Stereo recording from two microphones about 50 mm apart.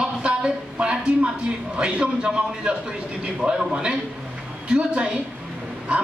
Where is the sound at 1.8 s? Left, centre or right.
Right.